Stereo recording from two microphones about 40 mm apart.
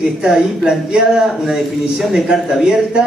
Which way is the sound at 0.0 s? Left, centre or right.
Centre.